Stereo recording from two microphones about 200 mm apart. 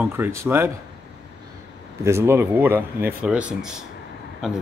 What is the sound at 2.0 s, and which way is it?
Speech, 10° right (ahead or behind).